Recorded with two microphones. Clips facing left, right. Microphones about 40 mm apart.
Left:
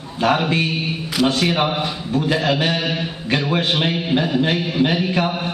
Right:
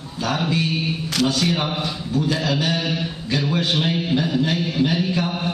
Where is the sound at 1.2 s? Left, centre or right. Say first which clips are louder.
Left 4 dB; left.